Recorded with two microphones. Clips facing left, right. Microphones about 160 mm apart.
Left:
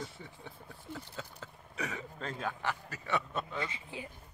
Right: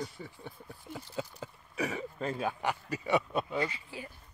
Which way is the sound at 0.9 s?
15° right (ahead or behind).